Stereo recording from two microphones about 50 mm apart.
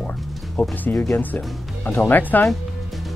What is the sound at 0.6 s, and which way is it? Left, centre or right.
Speech, left.